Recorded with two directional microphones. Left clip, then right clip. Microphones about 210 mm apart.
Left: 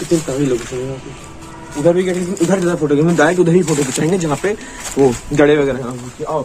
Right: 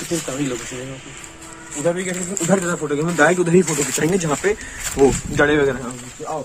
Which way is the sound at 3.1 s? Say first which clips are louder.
Right 1 dB; 15° right (ahead or behind).